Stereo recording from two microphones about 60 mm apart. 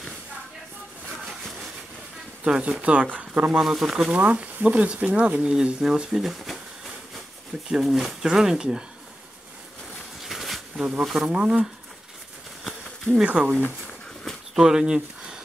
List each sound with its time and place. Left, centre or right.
2.4 s speech: centre
3.6 s speech: centre
4.2 s speech: right; by 6.3 s centre
7.8 s speech: centre
10.2 s a sound: centre
10.8 s speech: centre
12.6 s a sound: centre
14.5 s speech: centre